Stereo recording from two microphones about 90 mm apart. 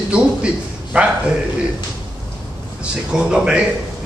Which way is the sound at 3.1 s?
10° right (ahead or behind).